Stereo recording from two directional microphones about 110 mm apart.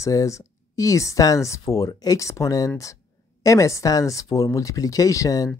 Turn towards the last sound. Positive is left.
turn(degrees=30)  # may be behind; listen again after turning